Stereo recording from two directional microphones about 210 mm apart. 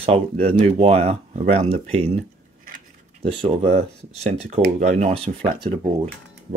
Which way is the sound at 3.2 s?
30° right (ahead or behind).